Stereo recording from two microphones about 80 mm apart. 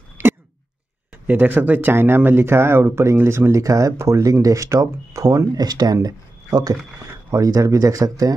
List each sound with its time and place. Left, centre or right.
0.2 s cough: right
1.2 s speech: right